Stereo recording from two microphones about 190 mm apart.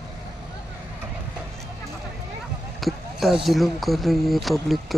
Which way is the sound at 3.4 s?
Centre (ahead or behind).